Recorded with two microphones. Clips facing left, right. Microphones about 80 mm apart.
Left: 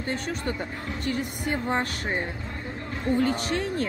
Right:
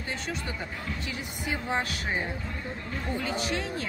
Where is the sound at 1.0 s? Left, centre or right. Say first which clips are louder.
Left 6 dB; left.